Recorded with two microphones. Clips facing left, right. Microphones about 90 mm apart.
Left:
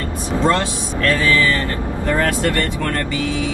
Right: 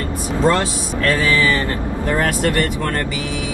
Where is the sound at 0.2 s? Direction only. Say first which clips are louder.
Even; 20° right (ahead or behind).